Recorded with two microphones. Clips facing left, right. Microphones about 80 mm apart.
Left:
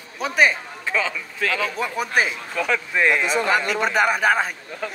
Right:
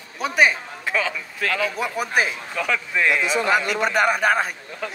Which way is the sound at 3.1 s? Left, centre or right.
Left.